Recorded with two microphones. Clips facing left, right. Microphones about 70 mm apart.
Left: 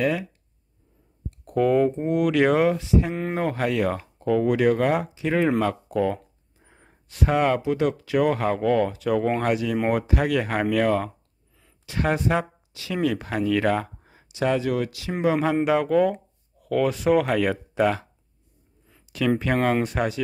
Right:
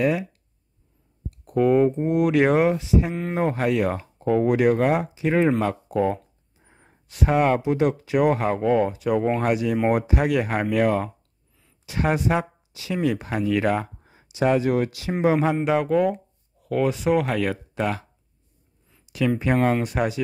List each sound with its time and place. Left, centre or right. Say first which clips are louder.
0.0 s speech: right 2 dB; centre
1.4 s speech: right 2 dB; centre
6.6 s gasp: even; centre
7.1 s speech: right 1 dB; centre
14.4 s speech: right 3 dB; right
15.5 s speech: left 1 dB; centre
19.5 s speech: right 1 dB; centre